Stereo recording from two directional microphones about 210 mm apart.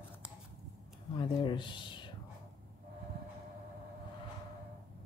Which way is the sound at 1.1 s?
20° left (ahead or behind).